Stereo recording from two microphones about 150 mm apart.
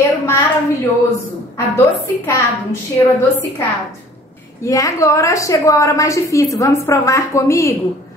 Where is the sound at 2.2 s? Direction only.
20° left (ahead or behind).